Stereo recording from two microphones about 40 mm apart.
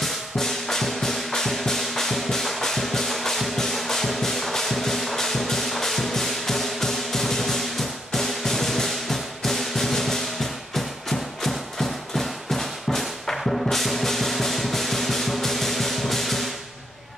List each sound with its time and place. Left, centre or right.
0.0 s music: centre